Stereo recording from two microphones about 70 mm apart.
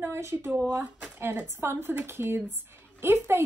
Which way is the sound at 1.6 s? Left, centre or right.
Right.